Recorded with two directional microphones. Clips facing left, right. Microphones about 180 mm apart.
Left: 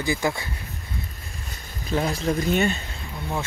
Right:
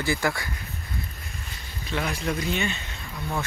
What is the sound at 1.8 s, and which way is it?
Speech, 35° left (ahead or behind).